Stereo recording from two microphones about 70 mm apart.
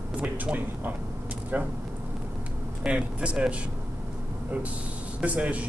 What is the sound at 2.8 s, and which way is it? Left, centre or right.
Speech, centre.